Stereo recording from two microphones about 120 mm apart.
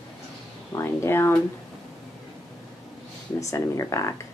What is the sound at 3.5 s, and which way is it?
Speech, 25° left (ahead or behind).